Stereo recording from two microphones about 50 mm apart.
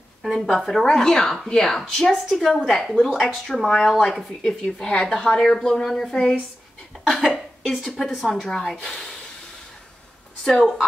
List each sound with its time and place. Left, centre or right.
0.3 s speech: centre
7.2 s speech: centre
8.3 s speech: centre
10.4 s speech: centre